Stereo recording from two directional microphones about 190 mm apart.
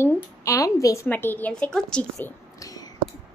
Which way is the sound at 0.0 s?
15° left (ahead or behind).